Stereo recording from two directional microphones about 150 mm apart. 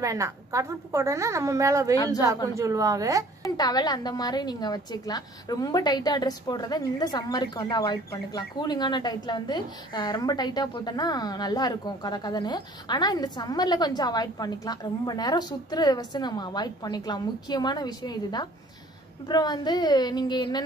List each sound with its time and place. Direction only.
0.0 s a woman's voice: 20° right (ahead or behind)
3.4 s a woman's voice: 25° left (ahead or behind)